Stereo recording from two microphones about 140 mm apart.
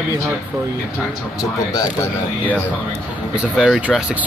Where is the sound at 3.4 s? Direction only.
5° right (ahead or behind).